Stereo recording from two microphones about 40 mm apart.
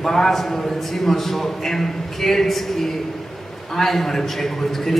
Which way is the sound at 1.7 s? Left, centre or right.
Centre.